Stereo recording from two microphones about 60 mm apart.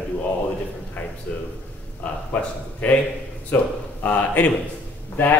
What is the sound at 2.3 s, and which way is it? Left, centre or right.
Speech, left.